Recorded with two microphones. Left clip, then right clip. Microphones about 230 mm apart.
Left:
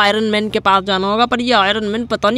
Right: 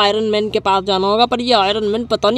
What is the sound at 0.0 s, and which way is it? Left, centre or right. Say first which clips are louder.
Speech: even; left.